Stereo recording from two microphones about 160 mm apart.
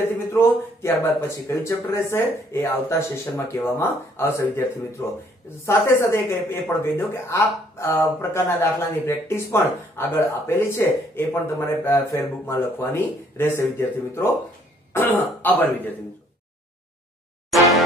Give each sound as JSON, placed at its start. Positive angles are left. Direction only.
{"t": 0.3, "sound": "a woman's voice", "side_deg": 15}
{"t": 17.5, "sound": "music", "side_deg": 0}